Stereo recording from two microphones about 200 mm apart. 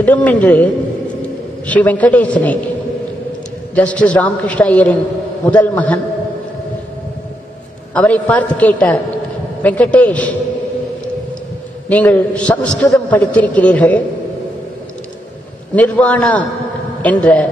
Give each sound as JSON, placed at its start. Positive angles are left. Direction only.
{"t": 0.0, "sound": "a man's voice", "side_deg": 10}
{"t": 1.7, "sound": "a man's voice", "side_deg": 5}
{"t": 3.7, "sound": "a man's voice", "side_deg": 5}
{"t": 7.9, "sound": "a man's voice", "side_deg": 5}
{"t": 11.9, "sound": "a man's voice", "side_deg": 5}
{"t": 15.7, "sound": "a man's voice", "side_deg": 5}